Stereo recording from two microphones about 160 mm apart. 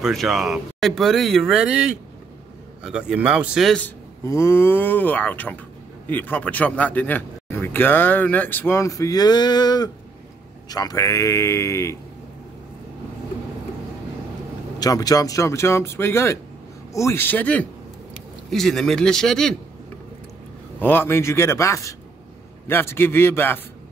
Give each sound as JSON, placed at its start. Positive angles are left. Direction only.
{"t": 0.0, "sound": "speech", "side_deg": 0}
{"t": 4.2, "sound": "speech", "side_deg": 15}
{"t": 14.8, "sound": "speech", "side_deg": 25}
{"t": 20.8, "sound": "speech", "side_deg": 15}